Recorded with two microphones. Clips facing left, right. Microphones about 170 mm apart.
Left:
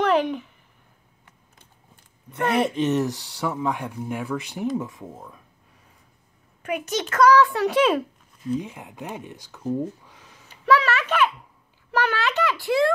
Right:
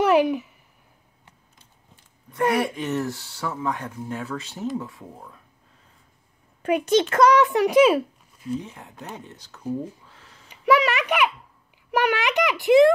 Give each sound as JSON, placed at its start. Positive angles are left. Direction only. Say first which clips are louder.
{"t": 0.0, "sound": "a sound", "louder": "right 3 dB", "side_deg": -10}
{"t": 2.3, "sound": "speech", "louder": "even", "side_deg": 20}
{"t": 5.1, "sound": "speech", "louder": "left 2 dB", "side_deg": 5}
{"t": 6.6, "sound": "a child's voice", "louder": "right 7 dB", "side_deg": -30}
{"t": 8.5, "sound": "speech", "louder": "left 3 dB", "side_deg": 15}
{"t": 10.5, "sound": "a sound", "louder": "right 1 dB", "side_deg": -15}